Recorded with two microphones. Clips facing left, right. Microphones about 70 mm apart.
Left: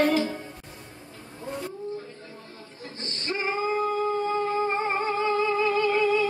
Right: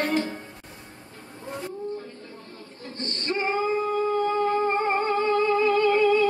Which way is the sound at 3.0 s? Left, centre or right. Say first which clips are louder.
Right 3 dB; centre.